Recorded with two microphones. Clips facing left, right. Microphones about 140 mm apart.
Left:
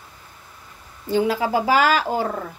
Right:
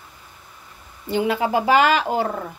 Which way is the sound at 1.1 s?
15° right (ahead or behind).